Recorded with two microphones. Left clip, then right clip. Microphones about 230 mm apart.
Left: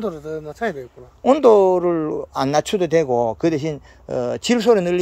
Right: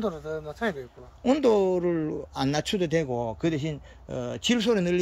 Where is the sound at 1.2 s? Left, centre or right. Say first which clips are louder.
Left 10 dB; centre.